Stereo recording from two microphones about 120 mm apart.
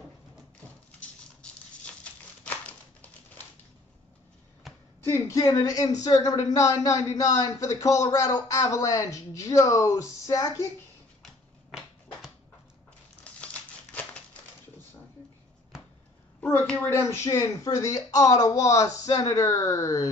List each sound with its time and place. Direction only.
0.9 s patter: 10° left (ahead or behind)
2.4 s crumpling: 10° left (ahead or behind)
4.6 s a sound: centre (ahead or behind)
5.1 s speech: 25° left (ahead or behind)
11.2 s typewriter: centre (ahead or behind)
13.2 s crumpling: 10° left (ahead or behind)
16.9 s speech: 25° left (ahead or behind)